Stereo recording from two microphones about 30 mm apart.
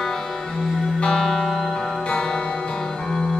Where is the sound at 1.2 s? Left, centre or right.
Centre.